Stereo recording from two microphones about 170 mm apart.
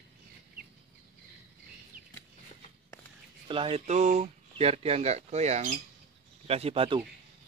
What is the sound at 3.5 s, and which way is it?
Speech, 35° right (ahead or behind).